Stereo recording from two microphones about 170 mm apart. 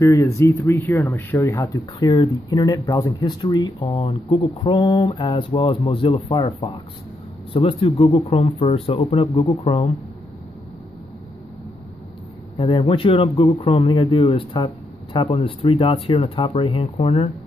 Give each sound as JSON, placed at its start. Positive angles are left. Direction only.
{"t": 0.0, "sound": "speech", "side_deg": 15}
{"t": 12.5, "sound": "speech", "side_deg": 30}